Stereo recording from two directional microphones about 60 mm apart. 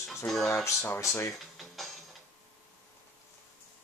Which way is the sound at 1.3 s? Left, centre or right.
Centre.